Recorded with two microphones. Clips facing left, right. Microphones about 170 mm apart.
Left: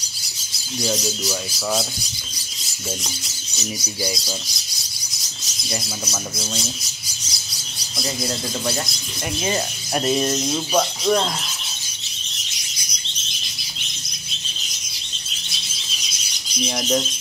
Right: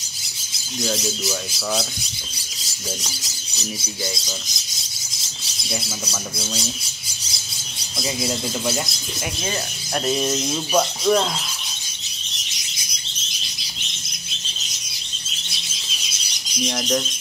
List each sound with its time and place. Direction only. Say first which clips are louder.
0.7 s speech: left 1 dB; 5° left (ahead or behind)
3.5 s speech: left 2 dB; 25° right (ahead or behind)
8.0 s speech: right 1 dB; 5° right (ahead or behind)
9.9 s speech: left 2 dB; centre (ahead or behind)
16.6 s speech: left 1 dB; centre (ahead or behind)